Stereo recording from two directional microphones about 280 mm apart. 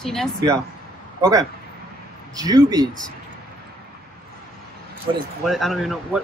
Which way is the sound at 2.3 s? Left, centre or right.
Centre.